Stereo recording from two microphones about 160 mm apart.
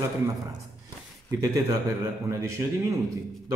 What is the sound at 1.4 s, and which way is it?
A man's voice, 20° right (ahead or behind).